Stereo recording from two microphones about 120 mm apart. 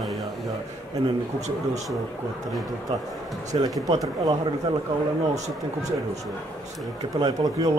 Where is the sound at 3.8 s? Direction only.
30° right (ahead or behind).